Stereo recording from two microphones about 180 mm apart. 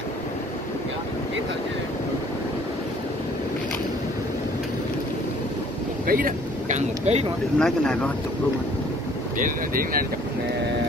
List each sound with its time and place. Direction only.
6.0 s speech: 50° right (ahead or behind)
7.5 s speech: 5° left (ahead or behind)
9.4 s speech: 50° right (ahead or behind)